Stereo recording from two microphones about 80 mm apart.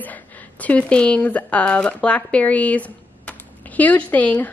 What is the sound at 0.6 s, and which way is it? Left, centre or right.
A woman's voice, centre.